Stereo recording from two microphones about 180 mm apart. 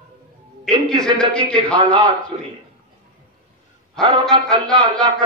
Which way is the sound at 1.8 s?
25° right (ahead or behind).